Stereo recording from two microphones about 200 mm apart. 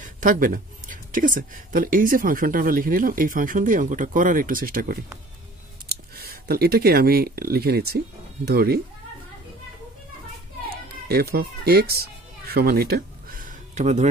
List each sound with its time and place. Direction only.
0.0 s speech: 45° right (ahead or behind)
11.1 s speech: 50° right (ahead or behind)
12.4 s a sound: 50° right (ahead or behind); by 14.0 s 35° right (ahead or behind)